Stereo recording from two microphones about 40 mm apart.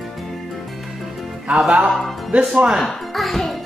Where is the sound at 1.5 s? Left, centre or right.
Right.